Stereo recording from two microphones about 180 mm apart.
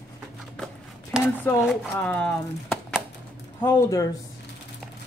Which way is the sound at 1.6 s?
Centre (ahead or behind).